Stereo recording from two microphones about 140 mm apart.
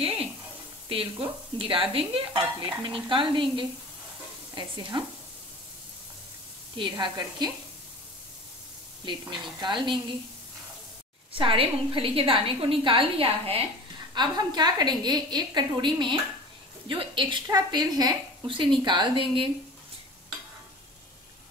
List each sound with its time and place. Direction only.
0.0 s frying: 40° right (ahead or behind)
0.8 s stir: 40° right (ahead or behind)
6.8 s stir: 30° right (ahead or behind)
9.3 s stir: 35° right (ahead or behind)
11.3 s stir: 40° right (ahead or behind)
14.1 s stir: 30° right (ahead or behind)